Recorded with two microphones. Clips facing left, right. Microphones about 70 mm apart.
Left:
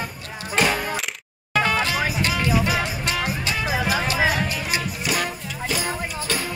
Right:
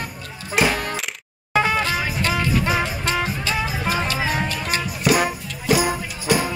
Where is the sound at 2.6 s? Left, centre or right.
Right.